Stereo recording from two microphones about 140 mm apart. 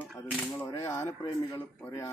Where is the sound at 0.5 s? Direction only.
20° left (ahead or behind).